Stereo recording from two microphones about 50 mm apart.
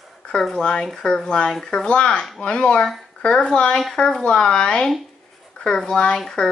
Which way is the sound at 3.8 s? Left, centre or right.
Centre.